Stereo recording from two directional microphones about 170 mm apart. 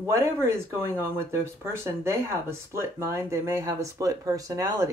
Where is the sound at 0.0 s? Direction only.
15° right (ahead or behind).